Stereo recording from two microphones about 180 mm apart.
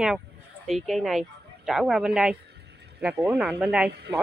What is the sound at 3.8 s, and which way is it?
Speech, 65° right (ahead or behind).